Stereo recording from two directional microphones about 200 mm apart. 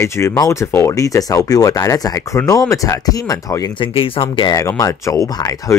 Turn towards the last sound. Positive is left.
turn(degrees=15)  # may be behind; listen again after turning